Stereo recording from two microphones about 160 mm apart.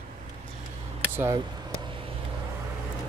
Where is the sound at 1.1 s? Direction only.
15° right (ahead or behind).